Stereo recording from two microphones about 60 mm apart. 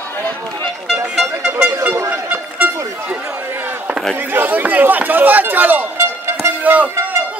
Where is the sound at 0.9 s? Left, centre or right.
Centre.